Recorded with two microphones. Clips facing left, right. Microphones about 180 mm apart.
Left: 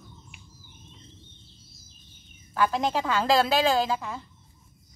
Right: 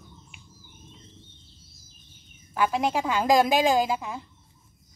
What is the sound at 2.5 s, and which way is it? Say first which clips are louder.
Speech: even; 10° right (ahead or behind).